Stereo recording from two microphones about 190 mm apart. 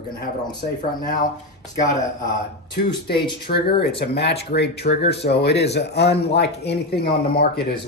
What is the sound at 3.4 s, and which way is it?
Speech, 55° left (ahead or behind).